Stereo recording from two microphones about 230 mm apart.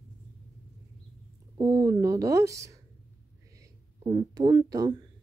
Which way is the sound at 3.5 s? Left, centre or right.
Centre.